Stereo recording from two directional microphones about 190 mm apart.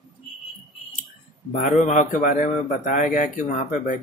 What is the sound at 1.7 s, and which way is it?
A man's voice, 40° left (ahead or behind).